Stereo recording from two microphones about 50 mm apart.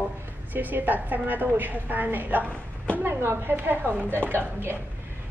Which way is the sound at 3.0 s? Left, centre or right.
Right.